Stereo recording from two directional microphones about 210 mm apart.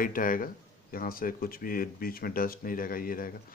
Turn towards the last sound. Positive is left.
turn(degrees=45)  # may be behind; listen again after turning